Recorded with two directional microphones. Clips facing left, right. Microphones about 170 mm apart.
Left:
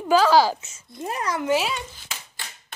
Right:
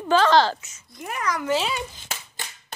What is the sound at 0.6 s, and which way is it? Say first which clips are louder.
Speech: left 5 dB; 25° left (ahead or behind).